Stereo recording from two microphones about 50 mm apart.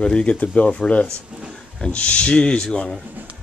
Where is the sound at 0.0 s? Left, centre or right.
Left.